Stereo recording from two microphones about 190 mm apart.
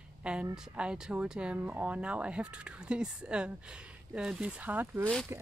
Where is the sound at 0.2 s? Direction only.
5° right (ahead or behind).